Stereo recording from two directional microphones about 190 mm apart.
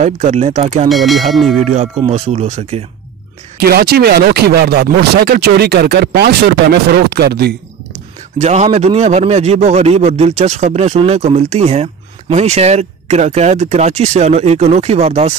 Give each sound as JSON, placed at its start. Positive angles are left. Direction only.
{"t": 0.0, "sound": "speech", "side_deg": -35}
{"t": 0.8, "sound": "speech", "side_deg": 0}
{"t": 1.6, "sound": "speech", "side_deg": -35}
{"t": 3.5, "sound": "speech", "side_deg": -55}
{"t": 8.4, "sound": "speech", "side_deg": -35}